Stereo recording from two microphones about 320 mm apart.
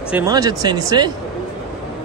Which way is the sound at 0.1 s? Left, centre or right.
Centre.